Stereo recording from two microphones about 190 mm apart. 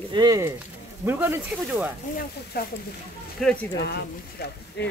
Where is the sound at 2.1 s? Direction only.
50° left (ahead or behind).